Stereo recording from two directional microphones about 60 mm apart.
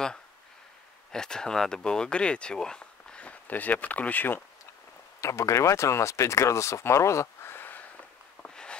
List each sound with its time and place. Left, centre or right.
1.1 s speech: centre; by 4.4 s left
5.2 s speech: left
7.5 s sniff: left
8.4 s a sound: centre